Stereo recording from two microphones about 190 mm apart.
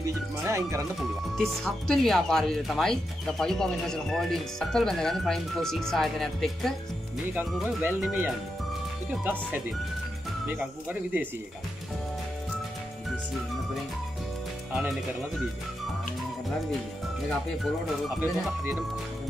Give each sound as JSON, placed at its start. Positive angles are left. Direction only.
{"t": 0.0, "sound": "speech", "side_deg": -15}
{"t": 0.9, "sound": "speech", "side_deg": 0}
{"t": 14.7, "sound": "speech", "side_deg": -5}
{"t": 18.2, "sound": "speech", "side_deg": -10}